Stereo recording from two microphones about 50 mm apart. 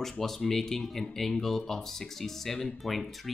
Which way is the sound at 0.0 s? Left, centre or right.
Centre.